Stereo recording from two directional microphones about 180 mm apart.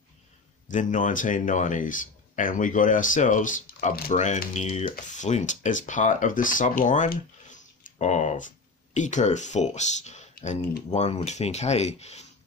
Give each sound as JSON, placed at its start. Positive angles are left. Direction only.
{"t": 0.7, "sound": "speech", "side_deg": 45}